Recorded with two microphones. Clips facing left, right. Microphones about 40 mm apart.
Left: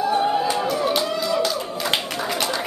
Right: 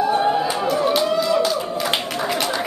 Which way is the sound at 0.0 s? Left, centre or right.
Centre.